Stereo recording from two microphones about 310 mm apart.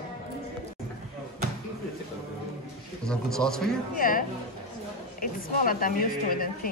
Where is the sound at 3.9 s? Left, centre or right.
Left.